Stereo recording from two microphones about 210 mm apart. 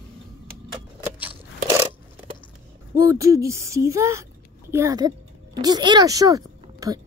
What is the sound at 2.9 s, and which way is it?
Speech, 15° right (ahead or behind).